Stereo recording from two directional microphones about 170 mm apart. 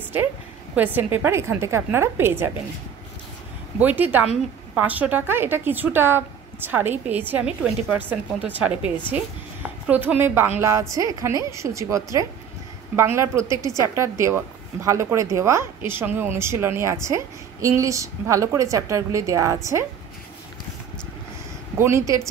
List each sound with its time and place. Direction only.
0.7 s a woman's voice: 15° right (ahead or behind)
3.8 s a woman's voice: 10° right (ahead or behind)
21.7 s a woman's voice: 15° right (ahead or behind)